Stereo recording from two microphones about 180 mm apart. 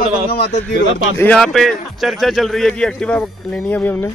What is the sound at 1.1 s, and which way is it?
Speech, 5° left (ahead or behind).